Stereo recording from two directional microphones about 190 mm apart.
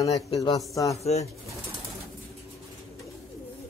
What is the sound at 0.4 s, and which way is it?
Speech, 20° left (ahead or behind).